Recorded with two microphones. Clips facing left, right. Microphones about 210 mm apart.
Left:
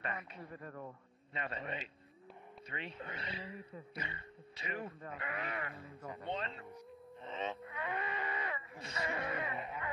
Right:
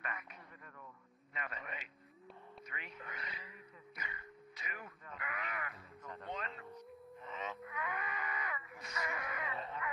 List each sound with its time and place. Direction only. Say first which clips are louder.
0.0 s a sound: left 4 dB; 30° left (ahead or behind)
1.3 s speech: left 5 dB; 30° left (ahead or behind)
7.2 s wail: left 4 dB; 30° left (ahead or behind)